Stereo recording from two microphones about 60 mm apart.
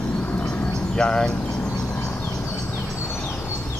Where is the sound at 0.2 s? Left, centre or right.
Left.